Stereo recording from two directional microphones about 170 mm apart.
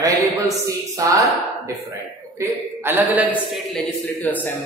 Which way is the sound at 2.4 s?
15° right (ahead or behind).